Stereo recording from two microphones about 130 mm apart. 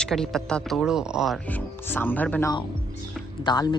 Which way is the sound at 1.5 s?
15° left (ahead or behind).